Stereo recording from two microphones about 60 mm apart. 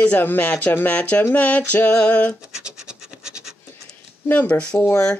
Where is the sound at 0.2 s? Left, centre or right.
Left.